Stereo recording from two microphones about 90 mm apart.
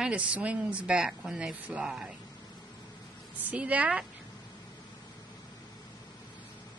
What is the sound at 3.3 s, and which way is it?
Speech, 15° right (ahead or behind).